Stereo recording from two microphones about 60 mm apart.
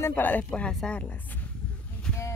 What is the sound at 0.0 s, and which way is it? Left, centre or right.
Speech, left.